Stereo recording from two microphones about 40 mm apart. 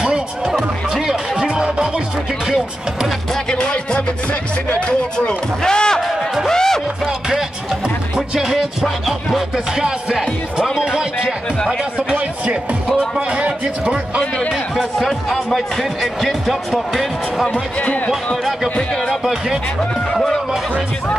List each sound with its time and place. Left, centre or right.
0.5 s music: centre
3.4 s music: left
5.6 s basketball bounce: centre
6.5 s music: centre
8.4 s music: centre
9.8 s music: centre
13.3 s a sound: right
14.8 s speech: centre